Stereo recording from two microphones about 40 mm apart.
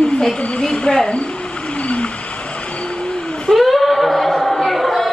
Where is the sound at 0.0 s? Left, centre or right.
Left.